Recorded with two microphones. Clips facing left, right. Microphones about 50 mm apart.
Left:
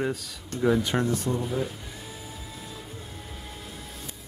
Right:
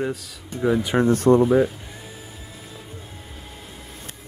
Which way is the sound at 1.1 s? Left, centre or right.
Right.